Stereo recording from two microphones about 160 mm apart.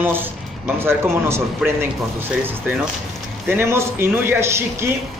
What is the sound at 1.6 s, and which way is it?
Speech, 5° right (ahead or behind).